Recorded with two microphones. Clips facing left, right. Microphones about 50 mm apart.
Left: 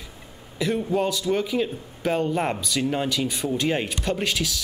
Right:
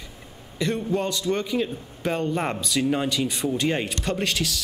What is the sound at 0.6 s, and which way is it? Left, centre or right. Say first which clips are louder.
A man's voice: left 1 dB; centre.